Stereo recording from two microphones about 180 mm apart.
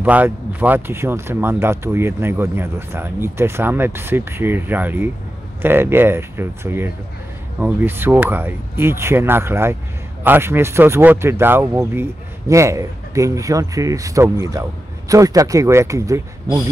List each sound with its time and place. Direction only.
0.0 s speech: 10° right (ahead or behind)